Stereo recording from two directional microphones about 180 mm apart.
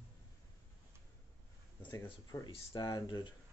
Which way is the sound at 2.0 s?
25° left (ahead or behind).